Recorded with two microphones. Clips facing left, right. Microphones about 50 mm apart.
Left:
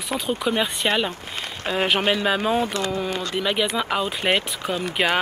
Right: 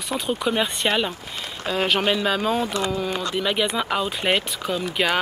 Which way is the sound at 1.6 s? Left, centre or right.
Centre.